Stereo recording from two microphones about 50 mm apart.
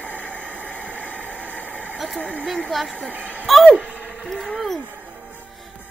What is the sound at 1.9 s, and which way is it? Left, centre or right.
Vehicle, centre.